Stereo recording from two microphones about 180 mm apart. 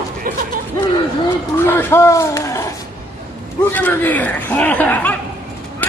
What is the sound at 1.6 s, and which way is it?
Speech, 10° left (ahead or behind).